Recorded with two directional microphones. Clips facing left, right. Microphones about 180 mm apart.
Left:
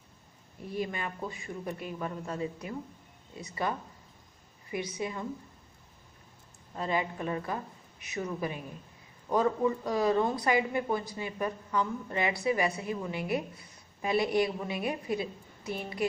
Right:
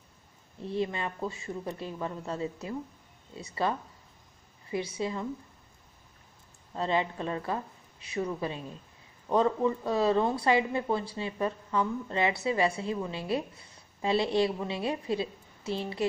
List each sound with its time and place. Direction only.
0.6 s speech: 25° right (ahead or behind)
6.8 s speech: 25° right (ahead or behind)